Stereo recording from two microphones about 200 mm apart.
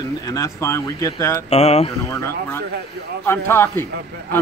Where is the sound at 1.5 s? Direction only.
30° left (ahead or behind).